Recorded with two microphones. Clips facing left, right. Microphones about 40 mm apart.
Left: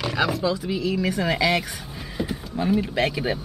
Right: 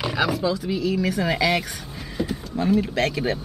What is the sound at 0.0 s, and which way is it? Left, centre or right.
Speech, centre.